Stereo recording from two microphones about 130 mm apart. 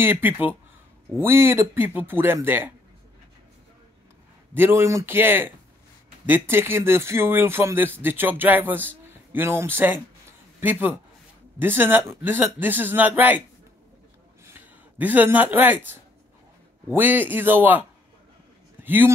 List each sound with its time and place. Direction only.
0.0 s speech: 15° right (ahead or behind)
4.6 s speech: 20° right (ahead or behind)
14.4 s speech: 15° right (ahead or behind)
16.9 s speech: 15° right (ahead or behind)
18.9 s speech: 15° right (ahead or behind)